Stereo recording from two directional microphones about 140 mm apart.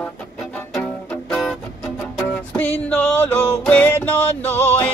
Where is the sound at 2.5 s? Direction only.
15° left (ahead or behind).